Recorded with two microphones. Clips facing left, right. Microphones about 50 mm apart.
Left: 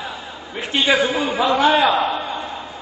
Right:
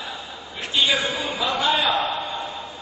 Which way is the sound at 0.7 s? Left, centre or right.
Left.